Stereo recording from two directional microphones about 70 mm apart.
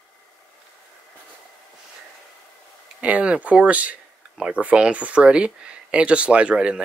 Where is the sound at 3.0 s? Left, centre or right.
Centre.